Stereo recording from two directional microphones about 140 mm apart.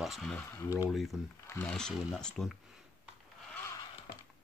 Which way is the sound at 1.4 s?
15° left (ahead or behind).